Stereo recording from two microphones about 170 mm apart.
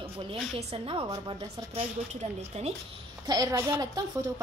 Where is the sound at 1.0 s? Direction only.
30° right (ahead or behind).